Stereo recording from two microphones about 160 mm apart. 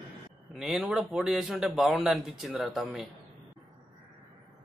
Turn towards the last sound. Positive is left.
turn(degrees=0)  # may be behind; listen again after turning